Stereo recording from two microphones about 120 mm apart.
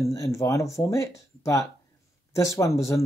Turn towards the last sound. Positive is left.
turn(degrees=25)  # may be behind; listen again after turning